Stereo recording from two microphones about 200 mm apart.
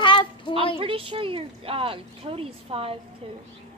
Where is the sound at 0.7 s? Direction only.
25° right (ahead or behind).